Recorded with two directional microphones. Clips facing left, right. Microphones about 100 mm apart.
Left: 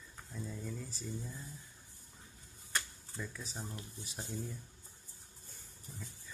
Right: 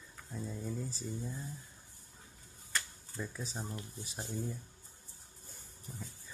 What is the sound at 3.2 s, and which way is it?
Speech, 25° right (ahead or behind).